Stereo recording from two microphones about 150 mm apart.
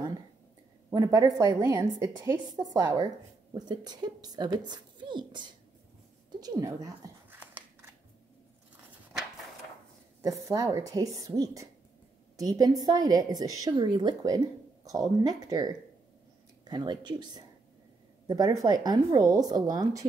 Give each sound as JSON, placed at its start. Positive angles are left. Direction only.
{"t": 0.9, "sound": "a woman's voice", "side_deg": -25}
{"t": 7.2, "sound": "scissors", "side_deg": -10}
{"t": 10.2, "sound": "a woman's voice", "side_deg": -25}